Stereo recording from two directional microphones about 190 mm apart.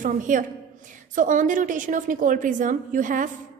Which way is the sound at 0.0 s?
45° right (ahead or behind).